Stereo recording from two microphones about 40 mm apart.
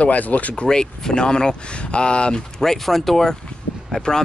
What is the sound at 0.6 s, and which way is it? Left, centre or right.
Speech, centre.